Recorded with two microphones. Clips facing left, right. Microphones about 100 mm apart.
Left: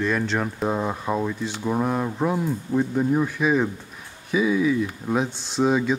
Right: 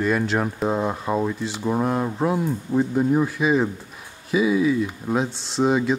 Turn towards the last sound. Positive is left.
turn(degrees=0)  # may be behind; listen again after turning